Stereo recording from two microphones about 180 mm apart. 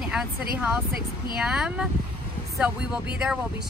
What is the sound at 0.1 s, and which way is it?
Speech, 5° right (ahead or behind).